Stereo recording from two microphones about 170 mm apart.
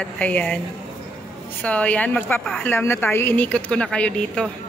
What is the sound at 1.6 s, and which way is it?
A man's voice, 10° left (ahead or behind).